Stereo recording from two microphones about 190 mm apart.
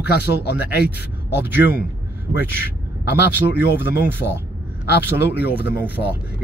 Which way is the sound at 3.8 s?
10° right (ahead or behind).